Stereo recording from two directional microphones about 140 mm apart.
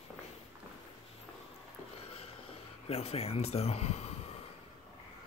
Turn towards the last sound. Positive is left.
turn(degrees=50)  # may be behind; listen again after turning